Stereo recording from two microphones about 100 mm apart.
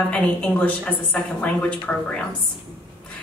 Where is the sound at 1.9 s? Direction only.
10° left (ahead or behind).